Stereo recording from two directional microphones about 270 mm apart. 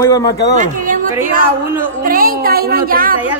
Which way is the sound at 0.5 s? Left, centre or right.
Right.